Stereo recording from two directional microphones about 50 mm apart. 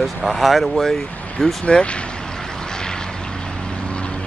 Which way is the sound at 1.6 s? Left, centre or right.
Left.